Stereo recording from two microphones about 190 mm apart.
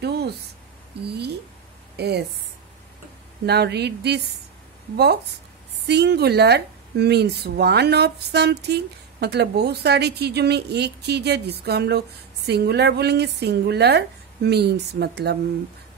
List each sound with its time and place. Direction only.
1.0 s speech: 60° right (ahead or behind)
3.4 s speech: 60° right (ahead or behind)